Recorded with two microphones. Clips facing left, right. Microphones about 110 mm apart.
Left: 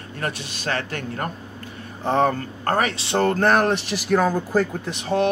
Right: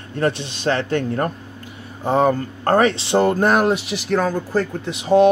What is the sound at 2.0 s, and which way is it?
Speech, 10° right (ahead or behind).